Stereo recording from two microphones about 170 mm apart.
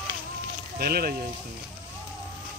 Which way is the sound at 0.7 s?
65° right (ahead or behind).